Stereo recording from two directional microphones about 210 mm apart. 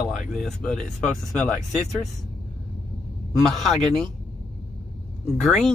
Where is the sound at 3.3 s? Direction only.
Centre (ahead or behind).